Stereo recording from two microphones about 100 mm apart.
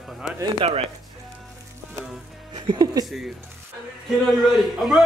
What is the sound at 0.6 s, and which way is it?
Speech, 75° right (ahead or behind).